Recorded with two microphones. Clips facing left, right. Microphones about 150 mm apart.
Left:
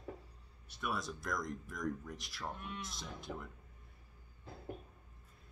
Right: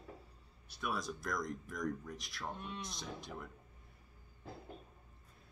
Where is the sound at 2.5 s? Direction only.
25° right (ahead or behind).